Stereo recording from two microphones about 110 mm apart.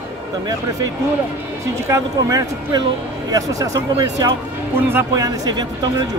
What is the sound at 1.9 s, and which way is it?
Speech, 30° right (ahead or behind).